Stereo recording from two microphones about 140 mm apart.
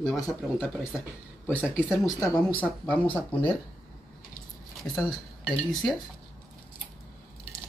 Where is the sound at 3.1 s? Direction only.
10° left (ahead or behind).